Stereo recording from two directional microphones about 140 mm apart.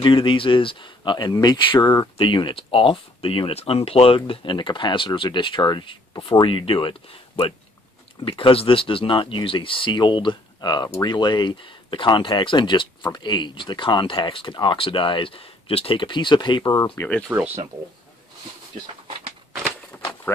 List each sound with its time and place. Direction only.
0.0 s speech: 35° left (ahead or behind)
16.9 s speech: 10° left (ahead or behind)
17.3 s speech: 15° right (ahead or behind)